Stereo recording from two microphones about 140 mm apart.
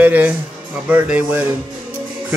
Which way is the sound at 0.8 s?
10° right (ahead or behind).